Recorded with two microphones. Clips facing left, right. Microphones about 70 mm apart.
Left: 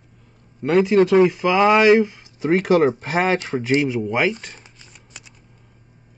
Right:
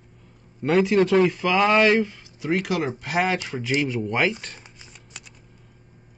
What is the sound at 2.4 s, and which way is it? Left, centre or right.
Speech, left.